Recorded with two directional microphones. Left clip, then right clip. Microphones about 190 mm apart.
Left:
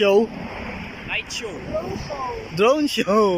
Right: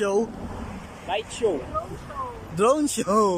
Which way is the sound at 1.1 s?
35° right (ahead or behind).